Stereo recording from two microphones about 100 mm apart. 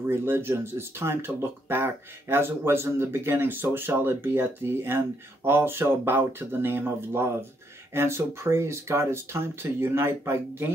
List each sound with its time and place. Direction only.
0.0 s speech: 25° right (ahead or behind)